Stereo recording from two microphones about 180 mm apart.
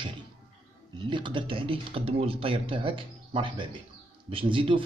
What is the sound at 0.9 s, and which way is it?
Speech, 25° right (ahead or behind).